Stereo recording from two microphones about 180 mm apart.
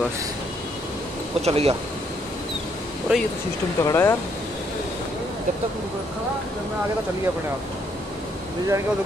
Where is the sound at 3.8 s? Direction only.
15° left (ahead or behind).